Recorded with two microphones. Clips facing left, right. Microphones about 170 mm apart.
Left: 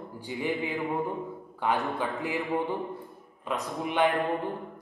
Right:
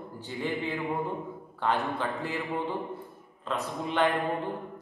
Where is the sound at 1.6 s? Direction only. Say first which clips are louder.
Even; 10° left (ahead or behind).